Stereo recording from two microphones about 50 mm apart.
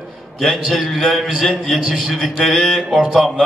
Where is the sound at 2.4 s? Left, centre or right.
Centre.